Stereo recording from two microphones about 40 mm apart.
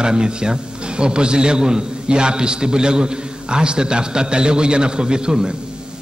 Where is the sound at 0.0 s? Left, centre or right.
Right.